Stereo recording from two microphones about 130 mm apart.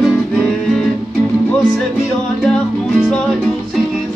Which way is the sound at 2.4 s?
Centre (ahead or behind).